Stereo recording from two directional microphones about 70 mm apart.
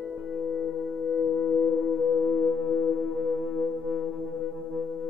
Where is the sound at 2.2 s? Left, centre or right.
Centre.